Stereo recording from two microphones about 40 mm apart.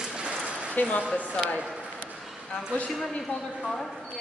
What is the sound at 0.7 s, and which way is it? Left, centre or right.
Speech, left.